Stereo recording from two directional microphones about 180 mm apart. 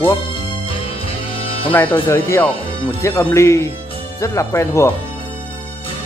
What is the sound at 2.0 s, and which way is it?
Speech, 15° left (ahead or behind).